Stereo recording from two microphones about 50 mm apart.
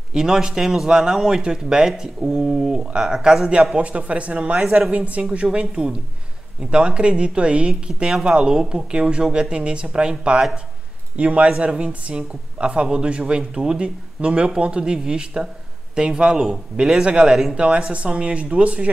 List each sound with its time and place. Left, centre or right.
0.1 s speech: centre
3.7 s speech: right
4.6 s speech: centre
4.9 s speech: right
8.1 s speech: centre; by 18.9 s right